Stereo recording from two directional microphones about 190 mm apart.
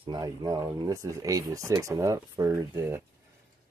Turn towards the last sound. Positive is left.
turn(degrees=-10)  # may be behind; listen again after turning